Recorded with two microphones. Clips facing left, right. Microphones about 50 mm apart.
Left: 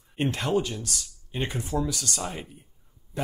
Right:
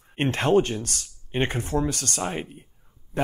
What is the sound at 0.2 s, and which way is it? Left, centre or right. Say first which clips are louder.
Speech: right 5 dB; right.